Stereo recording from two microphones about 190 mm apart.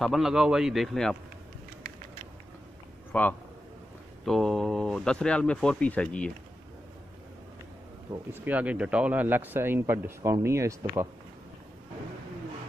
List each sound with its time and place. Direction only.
0.0 s speech: centre (ahead or behind)
3.1 s a man's voice: 10° left (ahead or behind)
8.1 s speech: 10° right (ahead or behind)